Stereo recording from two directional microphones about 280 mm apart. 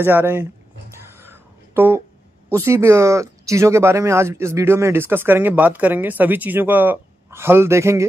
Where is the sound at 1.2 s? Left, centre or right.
Centre.